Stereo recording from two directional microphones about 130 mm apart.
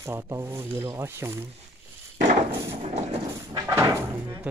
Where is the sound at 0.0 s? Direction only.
20° right (ahead or behind).